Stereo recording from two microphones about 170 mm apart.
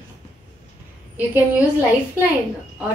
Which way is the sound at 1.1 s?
10° right (ahead or behind).